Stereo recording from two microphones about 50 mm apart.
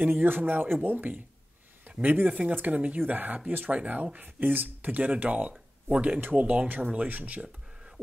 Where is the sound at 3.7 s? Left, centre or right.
Right.